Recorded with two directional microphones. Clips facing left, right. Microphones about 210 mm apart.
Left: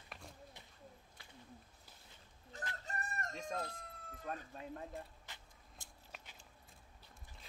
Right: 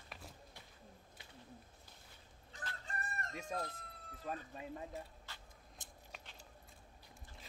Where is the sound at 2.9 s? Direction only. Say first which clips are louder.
Left 1 dB; 40° left (ahead or behind).